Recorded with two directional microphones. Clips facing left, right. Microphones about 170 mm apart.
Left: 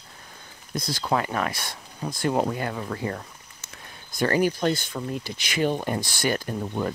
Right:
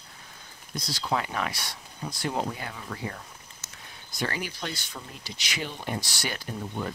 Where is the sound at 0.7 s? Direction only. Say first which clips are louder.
Left 4 dB; 55° left (ahead or behind).